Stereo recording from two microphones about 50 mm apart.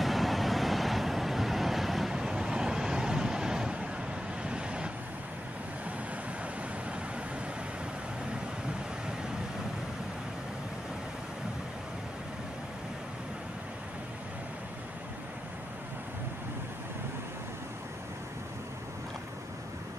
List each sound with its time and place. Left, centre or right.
0.0 s vehicle: centre
2.1 s vehicle: centre